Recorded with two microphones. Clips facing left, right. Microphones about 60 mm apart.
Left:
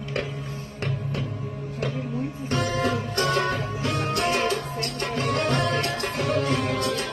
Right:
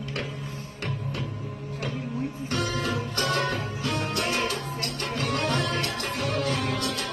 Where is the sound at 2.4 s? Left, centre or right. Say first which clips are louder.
Left 5 dB; left.